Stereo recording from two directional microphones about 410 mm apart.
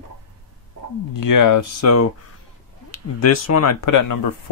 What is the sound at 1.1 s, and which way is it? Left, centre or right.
Speech, left.